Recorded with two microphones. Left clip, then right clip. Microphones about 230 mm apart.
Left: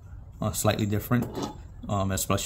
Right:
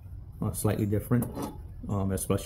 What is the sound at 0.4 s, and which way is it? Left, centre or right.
Speech, left.